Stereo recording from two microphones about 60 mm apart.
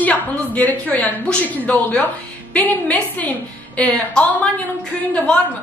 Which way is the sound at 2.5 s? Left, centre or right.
Left.